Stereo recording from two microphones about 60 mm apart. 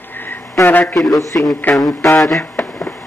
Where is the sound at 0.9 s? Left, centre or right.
Centre.